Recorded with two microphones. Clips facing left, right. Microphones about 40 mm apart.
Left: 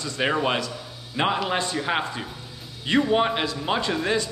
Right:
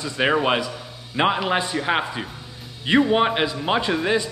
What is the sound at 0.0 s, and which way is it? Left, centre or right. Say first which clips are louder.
Speech: right 3 dB; centre.